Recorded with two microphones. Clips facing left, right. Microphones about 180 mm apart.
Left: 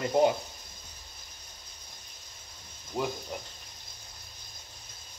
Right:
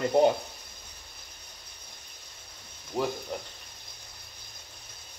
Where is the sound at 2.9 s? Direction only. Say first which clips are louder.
Right 2 dB; centre (ahead or behind).